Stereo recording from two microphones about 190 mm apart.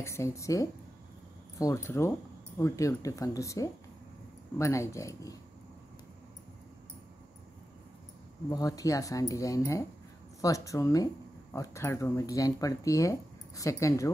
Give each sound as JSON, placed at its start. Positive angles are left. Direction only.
{"t": 0.0, "sound": "speech", "side_deg": 15}
{"t": 8.5, "sound": "speech", "side_deg": 20}